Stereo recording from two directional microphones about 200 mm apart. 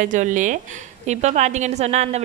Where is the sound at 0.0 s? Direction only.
40° right (ahead or behind).